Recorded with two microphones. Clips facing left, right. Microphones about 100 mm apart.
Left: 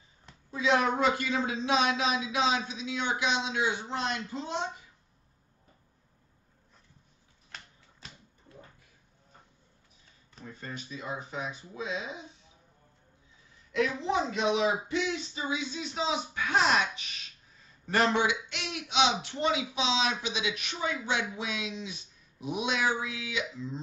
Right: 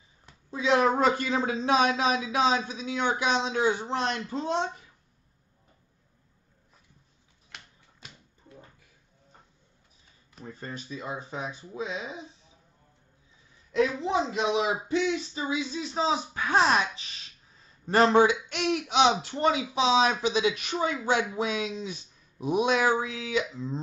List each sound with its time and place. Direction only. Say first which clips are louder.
0.5 s speech: right 3 dB; 30° right (ahead or behind)
10.4 s speech: right 2 dB; 35° right (ahead or behind)
13.7 s speech: right 3 dB; 25° right (ahead or behind); by 23.8 s 40° right (ahead or behind)